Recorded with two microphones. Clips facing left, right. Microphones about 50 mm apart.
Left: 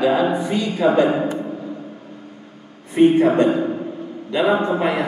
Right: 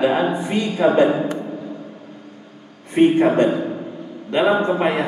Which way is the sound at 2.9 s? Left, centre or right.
Right.